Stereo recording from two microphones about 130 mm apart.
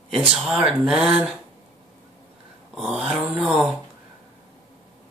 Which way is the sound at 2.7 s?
5° right (ahead or behind).